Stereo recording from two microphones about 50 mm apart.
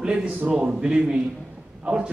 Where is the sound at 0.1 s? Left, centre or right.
Right.